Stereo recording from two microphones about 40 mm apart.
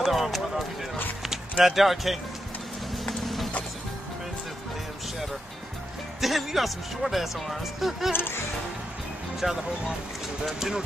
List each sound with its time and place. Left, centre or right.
0.0 s speech: centre
3.0 s music: centre
6.2 s speech: centre
8.1 s speech: left
9.4 s speech: centre